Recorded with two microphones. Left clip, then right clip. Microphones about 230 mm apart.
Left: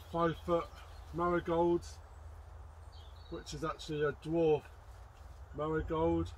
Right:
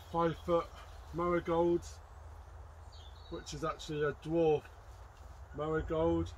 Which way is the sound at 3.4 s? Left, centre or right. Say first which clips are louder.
Right 1 dB; centre.